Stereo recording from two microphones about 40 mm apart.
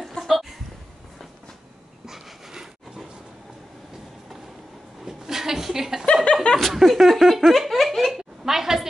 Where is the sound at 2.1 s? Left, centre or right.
Centre.